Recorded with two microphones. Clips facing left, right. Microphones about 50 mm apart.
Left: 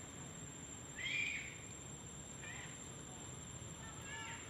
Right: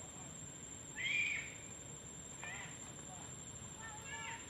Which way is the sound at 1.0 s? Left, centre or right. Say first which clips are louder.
Right 4 dB; right.